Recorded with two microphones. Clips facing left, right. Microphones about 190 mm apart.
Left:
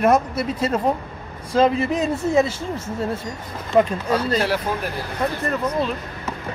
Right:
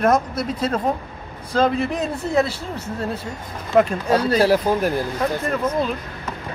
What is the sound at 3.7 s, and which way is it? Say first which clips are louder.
Speech: right 1 dB; 5° right (ahead or behind).